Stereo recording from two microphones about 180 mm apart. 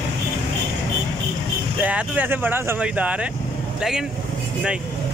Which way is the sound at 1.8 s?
10° right (ahead or behind).